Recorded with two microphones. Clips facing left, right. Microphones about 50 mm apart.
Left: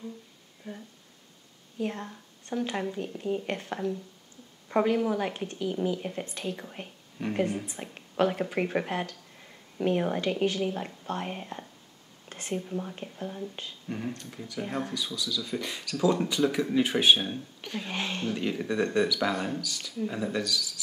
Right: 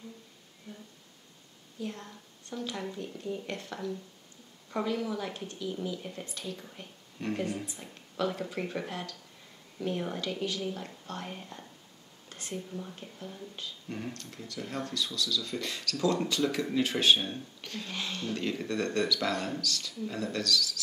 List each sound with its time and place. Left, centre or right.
1.8 s a woman's voice: left
3.3 s a woman's voice: left
7.2 s speech: centre
7.6 s a woman's voice: left
13.8 s speech: centre; by 18.3 s left
18.3 s speech: centre